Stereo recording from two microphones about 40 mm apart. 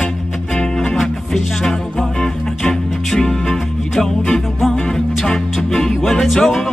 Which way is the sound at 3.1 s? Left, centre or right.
Centre.